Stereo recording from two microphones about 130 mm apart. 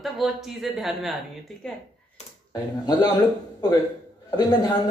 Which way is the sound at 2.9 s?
30° left (ahead or behind).